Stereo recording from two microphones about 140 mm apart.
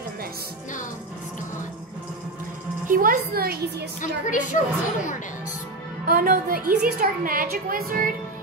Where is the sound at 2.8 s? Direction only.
80° right.